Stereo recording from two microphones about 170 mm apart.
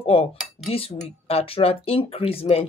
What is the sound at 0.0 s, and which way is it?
Speech, 35° left (ahead or behind).